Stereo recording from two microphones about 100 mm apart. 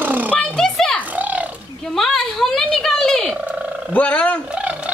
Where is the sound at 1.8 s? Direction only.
5° left (ahead or behind).